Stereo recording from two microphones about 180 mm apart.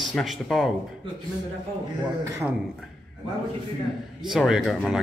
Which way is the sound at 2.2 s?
15° right (ahead or behind).